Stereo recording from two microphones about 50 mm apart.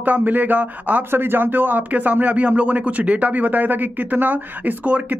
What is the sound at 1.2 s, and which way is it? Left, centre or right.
Speech, right.